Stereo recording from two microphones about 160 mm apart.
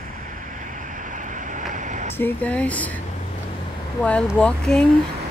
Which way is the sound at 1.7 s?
50° right (ahead or behind).